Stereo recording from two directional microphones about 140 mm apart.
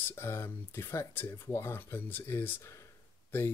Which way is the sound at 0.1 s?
15° left (ahead or behind).